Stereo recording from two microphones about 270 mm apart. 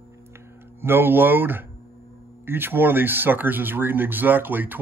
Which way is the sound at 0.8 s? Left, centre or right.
Centre.